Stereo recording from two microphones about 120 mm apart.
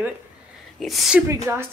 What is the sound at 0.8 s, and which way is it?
Speech, centre (ahead or behind).